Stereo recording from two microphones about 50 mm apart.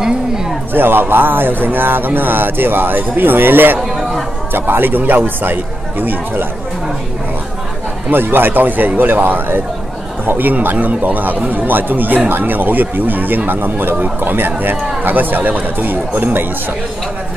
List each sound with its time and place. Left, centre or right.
0.7 s speech: right
8.1 s speech: right